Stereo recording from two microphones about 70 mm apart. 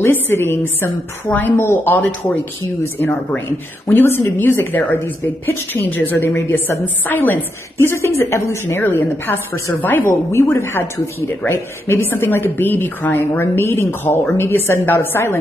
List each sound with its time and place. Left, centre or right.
0.0 s a woman's voice: left
7.8 s a woman's voice: left
10.3 s a woman's voice: left